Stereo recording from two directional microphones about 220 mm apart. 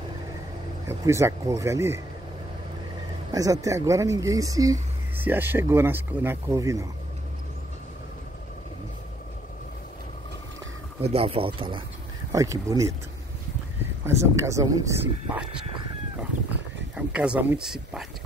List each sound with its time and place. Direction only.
0.8 s speech: 15° right (ahead or behind)
3.3 s speech: 15° right (ahead or behind)
11.0 s speech: 25° right (ahead or behind)
14.0 s speech: 15° right (ahead or behind)
16.9 s speech: 5° right (ahead or behind)